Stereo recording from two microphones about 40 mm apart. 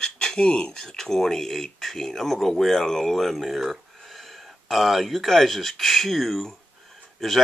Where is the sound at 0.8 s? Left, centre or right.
Centre.